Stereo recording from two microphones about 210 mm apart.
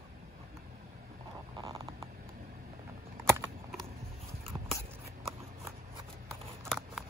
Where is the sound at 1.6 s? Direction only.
20° right (ahead or behind).